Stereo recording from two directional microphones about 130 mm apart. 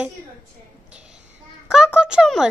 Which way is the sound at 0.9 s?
5° right (ahead or behind).